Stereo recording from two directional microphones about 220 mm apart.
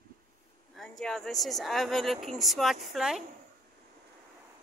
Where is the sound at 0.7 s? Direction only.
Centre (ahead or behind).